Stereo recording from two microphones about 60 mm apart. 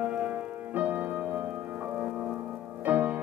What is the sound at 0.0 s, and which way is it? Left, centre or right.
Music, right.